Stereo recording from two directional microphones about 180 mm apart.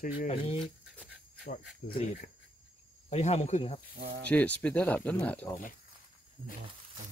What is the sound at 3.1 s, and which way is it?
Speech, 35° left (ahead or behind).